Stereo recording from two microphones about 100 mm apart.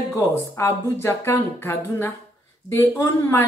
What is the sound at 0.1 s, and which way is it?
Speech, 30° left (ahead or behind).